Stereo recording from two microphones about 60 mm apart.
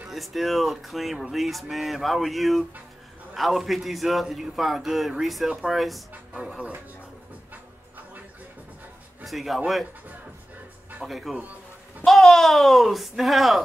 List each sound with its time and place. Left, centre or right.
0.1 s speech: centre
6.3 s speech: centre
9.2 s speech: centre
11.1 s speech: centre